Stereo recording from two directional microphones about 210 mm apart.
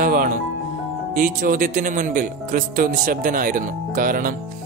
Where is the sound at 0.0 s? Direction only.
40° right (ahead or behind).